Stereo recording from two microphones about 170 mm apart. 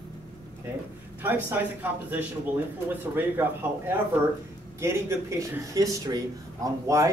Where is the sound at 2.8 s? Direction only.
10° right (ahead or behind).